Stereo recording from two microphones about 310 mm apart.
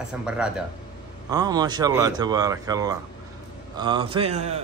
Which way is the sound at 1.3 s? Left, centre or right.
Centre.